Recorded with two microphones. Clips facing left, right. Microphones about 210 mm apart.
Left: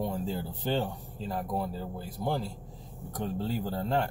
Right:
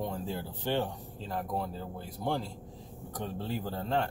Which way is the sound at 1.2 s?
5° left (ahead or behind).